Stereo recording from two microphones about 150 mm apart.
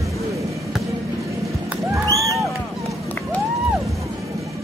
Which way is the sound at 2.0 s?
20° right (ahead or behind).